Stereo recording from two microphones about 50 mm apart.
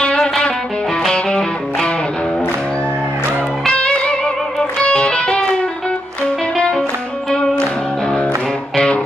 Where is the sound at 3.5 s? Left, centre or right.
Centre.